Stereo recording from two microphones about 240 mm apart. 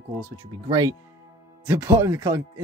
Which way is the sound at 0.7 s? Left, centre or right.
Centre.